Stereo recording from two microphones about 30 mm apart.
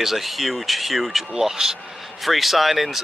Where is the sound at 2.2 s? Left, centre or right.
Centre.